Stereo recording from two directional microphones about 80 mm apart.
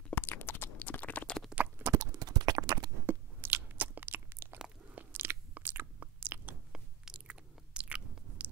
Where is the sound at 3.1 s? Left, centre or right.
Right.